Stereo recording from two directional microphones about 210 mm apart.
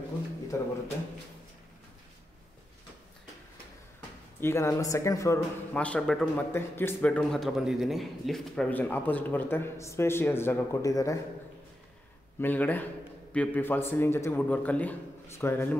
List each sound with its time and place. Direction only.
0.5 s speech: 10° left (ahead or behind)
4.4 s speech: 10° left (ahead or behind)
12.4 s speech: 10° left (ahead or behind)